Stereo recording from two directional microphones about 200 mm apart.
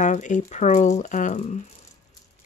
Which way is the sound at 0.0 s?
35° left (ahead or behind).